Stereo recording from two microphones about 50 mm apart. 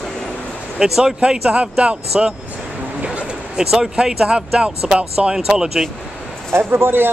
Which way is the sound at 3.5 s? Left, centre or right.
Centre.